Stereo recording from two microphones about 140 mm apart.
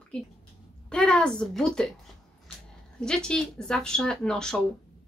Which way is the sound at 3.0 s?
5° left (ahead or behind).